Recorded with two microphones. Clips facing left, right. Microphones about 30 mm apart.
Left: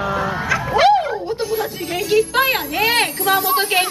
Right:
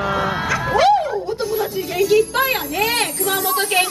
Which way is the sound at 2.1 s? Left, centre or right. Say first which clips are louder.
Left 2 dB; centre.